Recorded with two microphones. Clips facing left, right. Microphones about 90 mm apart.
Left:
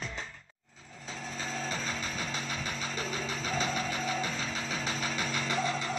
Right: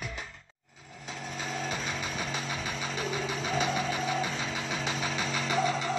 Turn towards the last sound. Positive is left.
turn(degrees=-20)  # may be behind; listen again after turning